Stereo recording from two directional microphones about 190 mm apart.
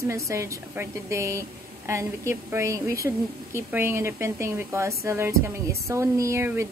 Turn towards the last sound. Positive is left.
turn(degrees=-15)  # may be behind; listen again after turning